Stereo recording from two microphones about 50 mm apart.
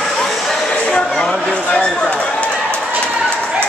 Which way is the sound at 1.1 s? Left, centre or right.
Centre.